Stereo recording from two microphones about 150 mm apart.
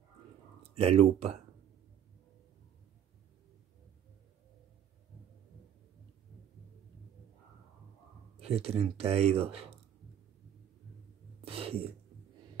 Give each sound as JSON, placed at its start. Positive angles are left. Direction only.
{"t": 0.7, "sound": "speech", "side_deg": -40}
{"t": 8.4, "sound": "speech", "side_deg": -40}
{"t": 11.4, "sound": "a sound", "side_deg": -40}